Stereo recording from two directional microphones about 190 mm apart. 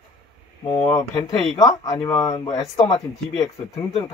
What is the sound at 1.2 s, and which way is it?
Speech, 15° left (ahead or behind).